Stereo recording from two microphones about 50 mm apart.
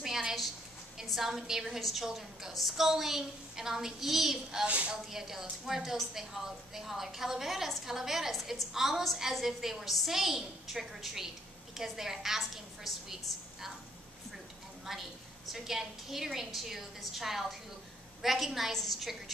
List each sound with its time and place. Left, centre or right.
0.0 s a sound: centre
1.0 s a woman's voice: centre
4.6 s speech: right
5.1 s a woman's voice: centre
14.9 s a woman's voice: centre